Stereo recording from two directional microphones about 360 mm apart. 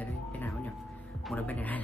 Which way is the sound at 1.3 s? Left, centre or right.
Centre.